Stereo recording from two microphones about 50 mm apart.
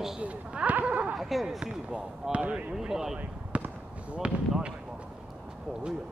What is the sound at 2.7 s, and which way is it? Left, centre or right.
Speech, centre.